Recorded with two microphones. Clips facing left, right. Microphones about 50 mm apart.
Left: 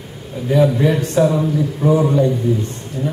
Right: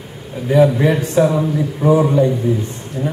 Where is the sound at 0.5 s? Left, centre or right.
Centre.